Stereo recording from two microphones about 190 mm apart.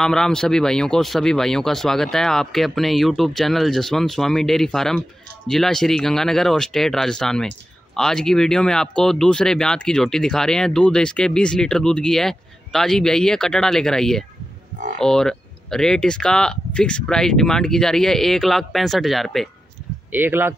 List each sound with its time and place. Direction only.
0.0 s speech: 5° left (ahead or behind)
20.1 s speech: 10° right (ahead or behind)